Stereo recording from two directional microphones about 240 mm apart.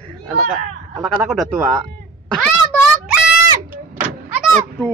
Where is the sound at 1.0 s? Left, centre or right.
Centre.